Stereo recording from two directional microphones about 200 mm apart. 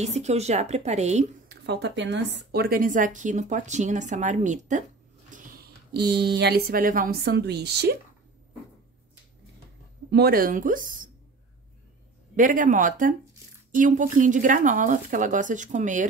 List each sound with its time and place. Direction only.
0.0 s a woman's voice: 35° right (ahead or behind)
1.5 s a woman's voice: 55° right (ahead or behind)
10.1 s speech: 50° right (ahead or behind)
12.4 s a woman's voice: 40° right (ahead or behind)